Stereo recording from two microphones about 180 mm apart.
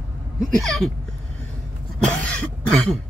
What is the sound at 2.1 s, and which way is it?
Cough, 5° left (ahead or behind).